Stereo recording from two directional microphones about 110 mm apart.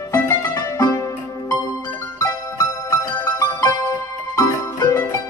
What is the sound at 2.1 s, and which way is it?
Music, 30° left (ahead or behind).